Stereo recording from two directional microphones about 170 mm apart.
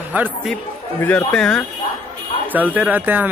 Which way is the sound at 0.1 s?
10° right (ahead or behind).